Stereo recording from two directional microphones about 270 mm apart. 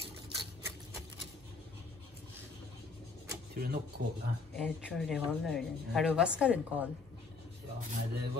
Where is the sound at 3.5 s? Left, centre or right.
Right.